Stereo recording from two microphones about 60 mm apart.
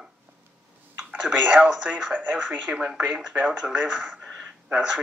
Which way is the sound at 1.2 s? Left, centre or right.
Centre.